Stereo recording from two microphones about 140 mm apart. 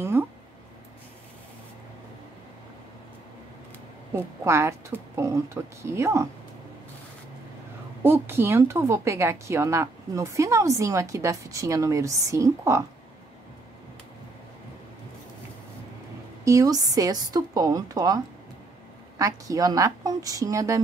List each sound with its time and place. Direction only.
0.2 s a sound: 15° right (ahead or behind)
4.1 s a woman's voice: 20° right (ahead or behind)
8.0 s a woman's voice: 15° right (ahead or behind)
16.4 s a woman's voice: 25° right (ahead or behind)